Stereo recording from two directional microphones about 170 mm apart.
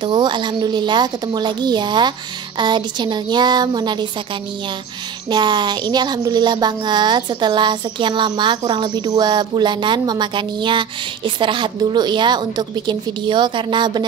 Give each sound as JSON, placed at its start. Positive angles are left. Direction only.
{"t": 0.0, "sound": "speech", "side_deg": -25}
{"t": 5.3, "sound": "speech", "side_deg": -25}